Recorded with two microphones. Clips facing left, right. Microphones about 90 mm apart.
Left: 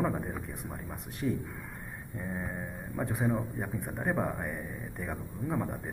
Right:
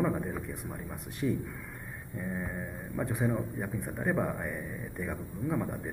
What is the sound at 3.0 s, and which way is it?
A man's voice, centre (ahead or behind).